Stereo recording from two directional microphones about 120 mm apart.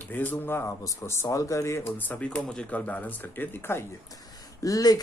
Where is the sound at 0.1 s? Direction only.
15° left (ahead or behind).